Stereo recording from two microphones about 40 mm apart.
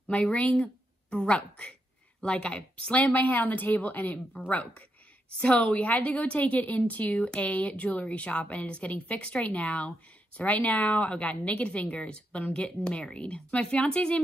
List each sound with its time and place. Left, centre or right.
0.1 s speech: left
5.4 s speech: left